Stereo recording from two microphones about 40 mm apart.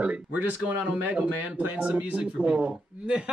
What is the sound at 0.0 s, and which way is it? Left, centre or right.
Speech, right.